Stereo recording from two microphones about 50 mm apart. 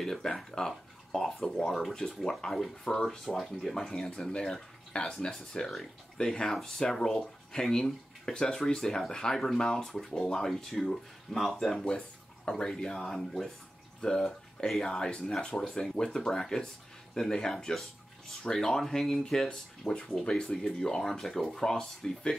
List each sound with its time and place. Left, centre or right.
0.0 s speech: centre
10.5 s speech: centre
12.4 s speech: centre
20.2 s speech: centre